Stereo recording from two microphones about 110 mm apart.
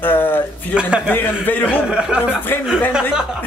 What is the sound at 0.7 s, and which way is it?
Speech, 10° right (ahead or behind).